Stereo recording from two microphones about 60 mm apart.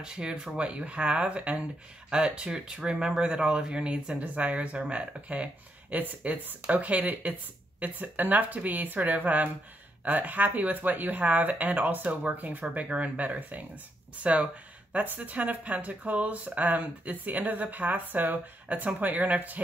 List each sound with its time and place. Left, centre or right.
0.0 s speech: centre